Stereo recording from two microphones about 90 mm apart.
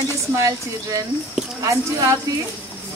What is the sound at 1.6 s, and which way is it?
Speech, 40° right (ahead or behind).